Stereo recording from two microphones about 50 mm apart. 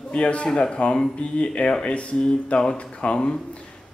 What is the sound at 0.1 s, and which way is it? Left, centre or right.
A man's voice, left.